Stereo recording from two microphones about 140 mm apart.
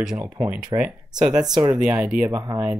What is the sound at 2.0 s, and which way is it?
Speech, 5° right (ahead or behind).